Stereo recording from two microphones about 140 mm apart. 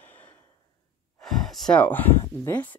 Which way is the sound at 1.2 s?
Centre (ahead or behind).